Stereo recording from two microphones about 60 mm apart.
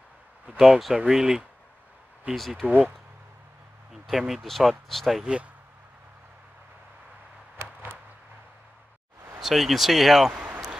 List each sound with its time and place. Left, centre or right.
0.6 s speech: centre
2.3 s speech: centre
3.9 s speech: centre
5.2 s speech: centre
9.4 s speech: centre